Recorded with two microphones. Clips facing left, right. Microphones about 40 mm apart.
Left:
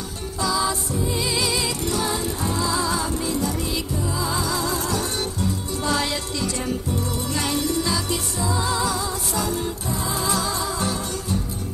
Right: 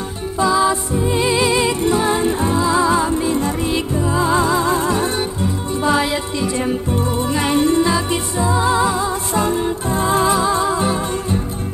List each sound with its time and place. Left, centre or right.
0.4 s music: right
10.3 s music: right